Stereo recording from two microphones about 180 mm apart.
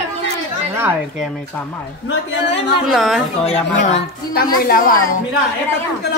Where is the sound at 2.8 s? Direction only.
Centre (ahead or behind).